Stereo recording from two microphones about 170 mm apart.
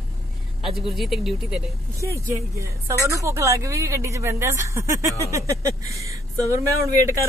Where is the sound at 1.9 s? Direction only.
15° right (ahead or behind).